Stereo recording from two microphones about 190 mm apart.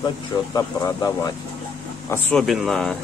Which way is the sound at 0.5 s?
20° left (ahead or behind).